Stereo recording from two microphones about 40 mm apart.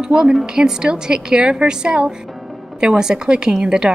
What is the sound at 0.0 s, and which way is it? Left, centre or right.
A woman's voice, centre.